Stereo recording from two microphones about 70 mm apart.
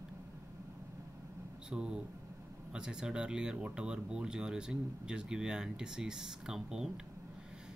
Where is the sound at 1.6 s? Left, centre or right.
Centre.